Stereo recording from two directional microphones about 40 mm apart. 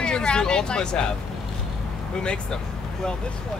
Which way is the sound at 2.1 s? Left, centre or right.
Left.